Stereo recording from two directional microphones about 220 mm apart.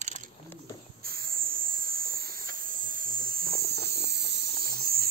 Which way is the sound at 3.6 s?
45° right (ahead or behind).